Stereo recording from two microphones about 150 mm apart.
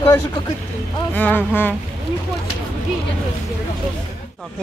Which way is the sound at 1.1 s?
10° left (ahead or behind).